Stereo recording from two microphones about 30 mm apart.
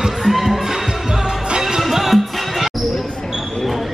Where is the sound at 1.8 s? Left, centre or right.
Centre.